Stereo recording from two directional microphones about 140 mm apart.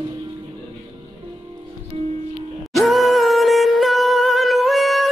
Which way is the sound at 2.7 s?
Centre (ahead or behind).